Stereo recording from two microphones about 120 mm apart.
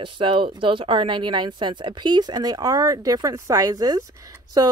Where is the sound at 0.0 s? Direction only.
45° right (ahead or behind).